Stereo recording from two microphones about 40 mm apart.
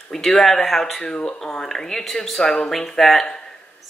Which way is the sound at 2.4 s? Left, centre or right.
Left.